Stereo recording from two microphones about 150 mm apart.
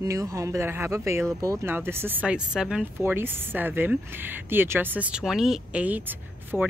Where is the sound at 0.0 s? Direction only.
20° right (ahead or behind).